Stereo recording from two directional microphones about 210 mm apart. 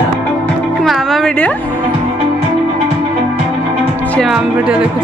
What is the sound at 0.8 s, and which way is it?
Music, centre (ahead or behind).